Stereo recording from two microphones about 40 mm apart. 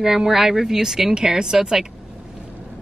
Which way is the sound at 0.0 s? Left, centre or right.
Centre.